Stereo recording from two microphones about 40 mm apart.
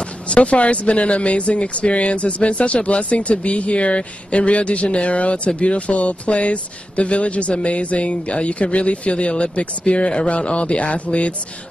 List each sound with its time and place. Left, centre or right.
0.0 s speech: left